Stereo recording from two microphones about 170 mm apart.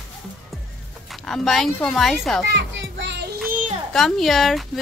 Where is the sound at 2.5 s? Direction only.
90° right; by 3.4 s 75° right (ahead or behind).